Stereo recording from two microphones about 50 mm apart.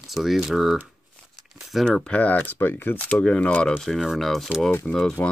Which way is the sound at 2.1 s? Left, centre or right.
Left.